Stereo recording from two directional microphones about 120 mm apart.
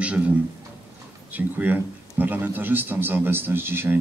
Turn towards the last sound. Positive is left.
turn(degrees=-20)  # may be behind; listen again after turning